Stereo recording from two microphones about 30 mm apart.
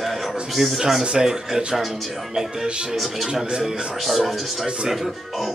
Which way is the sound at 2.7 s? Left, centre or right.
Right.